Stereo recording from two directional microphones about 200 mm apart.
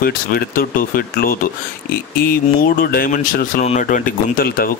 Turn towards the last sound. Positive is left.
turn(degrees=50)  # may be behind; listen again after turning